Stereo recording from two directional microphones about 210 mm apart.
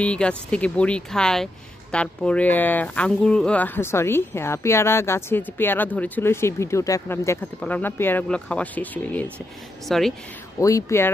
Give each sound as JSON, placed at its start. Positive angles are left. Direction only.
{"t": 0.0, "sound": "a woman's voice", "side_deg": 5}
{"t": 10.6, "sound": "speech", "side_deg": 15}